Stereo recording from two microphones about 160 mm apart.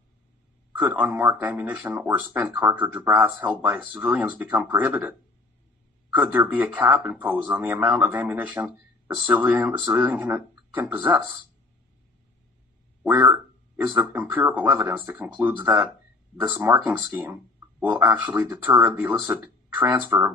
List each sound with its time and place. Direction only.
0.7 s speech: 10° right (ahead or behind)
6.1 s speech: 10° right (ahead or behind)
13.0 s speech: 10° right (ahead or behind)